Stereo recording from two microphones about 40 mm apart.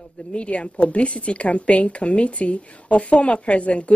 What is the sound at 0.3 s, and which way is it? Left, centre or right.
A woman's voice, left.